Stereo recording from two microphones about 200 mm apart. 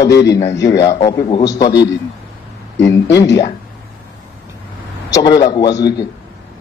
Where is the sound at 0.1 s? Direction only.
60° left (ahead or behind).